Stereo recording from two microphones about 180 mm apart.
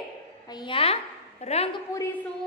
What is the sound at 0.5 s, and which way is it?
A woman's voice, 25° left (ahead or behind).